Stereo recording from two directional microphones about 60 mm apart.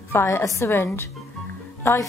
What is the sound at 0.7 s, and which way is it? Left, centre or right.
A woman's voice, left.